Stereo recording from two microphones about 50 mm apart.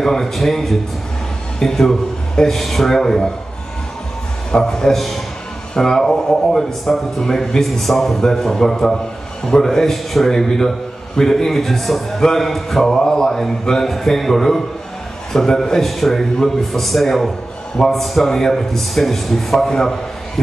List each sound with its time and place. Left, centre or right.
0.0 s a man's voice: centre
4.5 s a man's voice: centre